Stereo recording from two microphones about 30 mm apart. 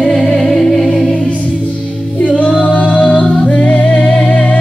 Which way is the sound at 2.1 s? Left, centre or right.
Left.